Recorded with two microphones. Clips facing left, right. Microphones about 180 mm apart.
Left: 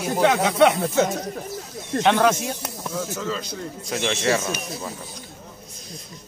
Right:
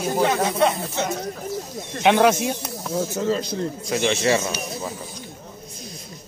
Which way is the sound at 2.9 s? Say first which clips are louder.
Right 6 dB; 35° right (ahead or behind).